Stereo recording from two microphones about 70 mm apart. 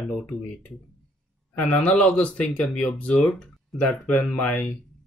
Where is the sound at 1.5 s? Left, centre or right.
Centre.